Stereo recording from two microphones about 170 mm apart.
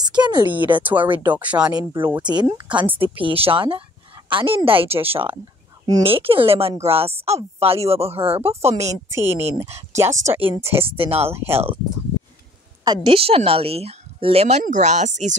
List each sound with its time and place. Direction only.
0.2 s speech: 25° right (ahead or behind)
1.3 s speech: 10° right (ahead or behind)
1.7 s speech: 25° right (ahead or behind); by 8.9 s 40° right (ahead or behind)
9.1 s speech: 15° right (ahead or behind)
10.8 s speech: 35° right (ahead or behind)
11.3 s speech: 15° right (ahead or behind)
12.8 s speech: 30° right (ahead or behind)